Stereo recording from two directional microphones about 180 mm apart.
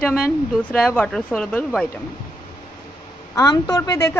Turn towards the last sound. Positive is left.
turn(degrees=15)  # may be behind; listen again after turning